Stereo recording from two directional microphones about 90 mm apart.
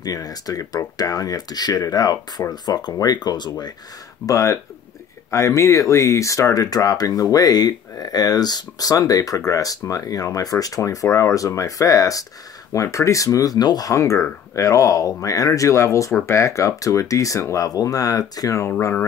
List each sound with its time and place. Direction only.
0.0 s speech: 45° left (ahead or behind)
4.3 s speech: 35° left (ahead or behind)